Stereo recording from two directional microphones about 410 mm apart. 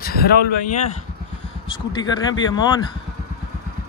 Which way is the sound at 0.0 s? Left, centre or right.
Left.